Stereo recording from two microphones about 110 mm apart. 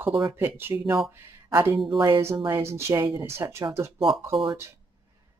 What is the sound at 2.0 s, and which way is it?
Speech, 25° right (ahead or behind).